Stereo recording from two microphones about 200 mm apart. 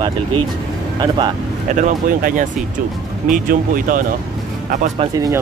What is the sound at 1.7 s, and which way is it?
Speech, 40° right (ahead or behind).